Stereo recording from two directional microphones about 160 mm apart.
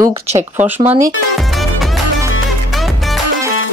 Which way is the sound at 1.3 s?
Centre (ahead or behind).